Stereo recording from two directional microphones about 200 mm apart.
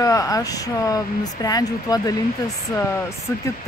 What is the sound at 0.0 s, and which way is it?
Speech, 15° left (ahead or behind).